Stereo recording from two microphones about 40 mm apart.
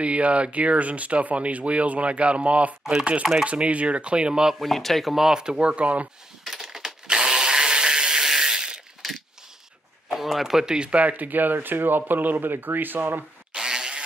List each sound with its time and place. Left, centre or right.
0.0 s speech: right
2.8 s speech: centre
3.4 s speech: right
4.6 s speech: centre
5.1 s speech: centre; by 6.0 s right
6.5 s a sound: centre
9.0 s a sound: centre
10.1 s speech: centre
10.9 s speech: right
13.5 s insect: centre